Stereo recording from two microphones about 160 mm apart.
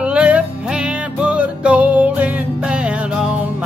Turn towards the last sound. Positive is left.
turn(degrees=-5)  # may be behind; listen again after turning